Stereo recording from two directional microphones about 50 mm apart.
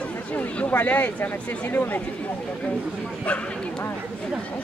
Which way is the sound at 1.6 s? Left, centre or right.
Left.